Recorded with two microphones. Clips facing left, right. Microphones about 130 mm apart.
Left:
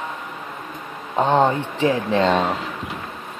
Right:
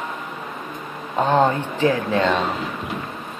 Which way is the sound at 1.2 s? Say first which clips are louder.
Even; 20° left (ahead or behind).